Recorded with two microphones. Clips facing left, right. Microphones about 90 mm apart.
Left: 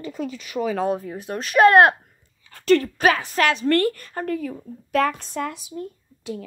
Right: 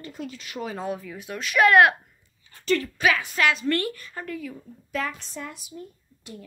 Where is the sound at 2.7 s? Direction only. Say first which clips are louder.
Left 5 dB; 45° left (ahead or behind).